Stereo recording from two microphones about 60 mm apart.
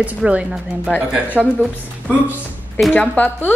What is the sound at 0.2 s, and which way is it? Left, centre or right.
Speech, centre.